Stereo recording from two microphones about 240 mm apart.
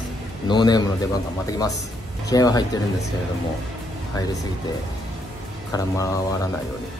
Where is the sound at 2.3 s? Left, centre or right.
Centre.